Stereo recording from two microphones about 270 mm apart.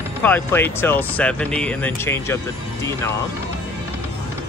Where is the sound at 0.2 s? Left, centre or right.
Centre.